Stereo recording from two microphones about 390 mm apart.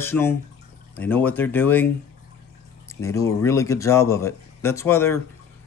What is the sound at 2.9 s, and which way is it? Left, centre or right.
Speech, centre.